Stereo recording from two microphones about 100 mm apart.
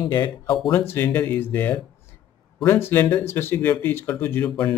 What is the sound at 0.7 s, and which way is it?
Speech, 20° left (ahead or behind).